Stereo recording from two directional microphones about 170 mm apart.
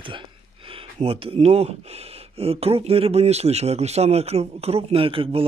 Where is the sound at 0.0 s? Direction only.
30° right (ahead or behind).